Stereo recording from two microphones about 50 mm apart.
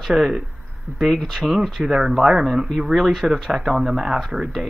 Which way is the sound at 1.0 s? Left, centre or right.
Centre.